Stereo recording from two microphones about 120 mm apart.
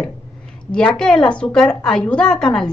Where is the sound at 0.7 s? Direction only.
5° left (ahead or behind).